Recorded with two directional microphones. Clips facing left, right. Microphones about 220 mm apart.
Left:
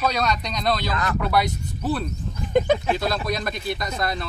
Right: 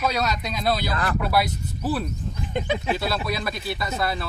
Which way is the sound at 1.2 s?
5° right (ahead or behind).